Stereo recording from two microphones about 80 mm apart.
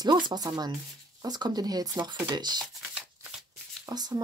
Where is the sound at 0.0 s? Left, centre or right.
Right.